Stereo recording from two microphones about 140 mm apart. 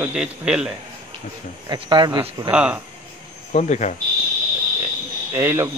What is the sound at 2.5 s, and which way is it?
Speech, 10° right (ahead or behind).